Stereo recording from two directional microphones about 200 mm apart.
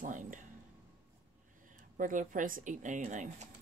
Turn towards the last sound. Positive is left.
turn(degrees=-35)  # may be behind; listen again after turning